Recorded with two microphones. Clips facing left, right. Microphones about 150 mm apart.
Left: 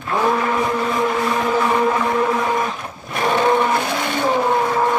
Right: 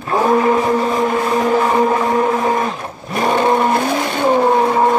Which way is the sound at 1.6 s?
40° right (ahead or behind).